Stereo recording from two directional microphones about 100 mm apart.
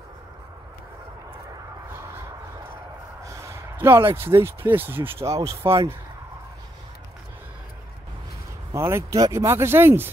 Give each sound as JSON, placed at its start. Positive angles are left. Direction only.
{"t": 3.3, "sound": "a sound", "side_deg": -30}
{"t": 3.7, "sound": "speech", "side_deg": -25}
{"t": 5.3, "sound": "speech", "side_deg": -30}
{"t": 8.7, "sound": "speech", "side_deg": -25}